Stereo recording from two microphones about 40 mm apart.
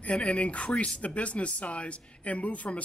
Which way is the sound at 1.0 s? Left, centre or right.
Left.